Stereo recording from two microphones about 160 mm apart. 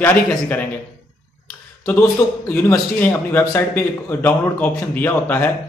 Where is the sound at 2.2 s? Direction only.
20° left (ahead or behind).